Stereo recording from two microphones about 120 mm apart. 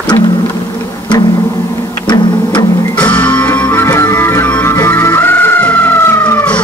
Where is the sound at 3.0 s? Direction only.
10° left (ahead or behind).